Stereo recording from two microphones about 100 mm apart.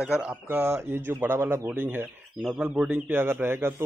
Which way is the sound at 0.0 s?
10° right (ahead or behind).